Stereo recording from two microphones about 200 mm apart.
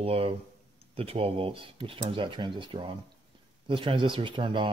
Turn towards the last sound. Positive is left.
turn(degrees=-25)  # may be behind; listen again after turning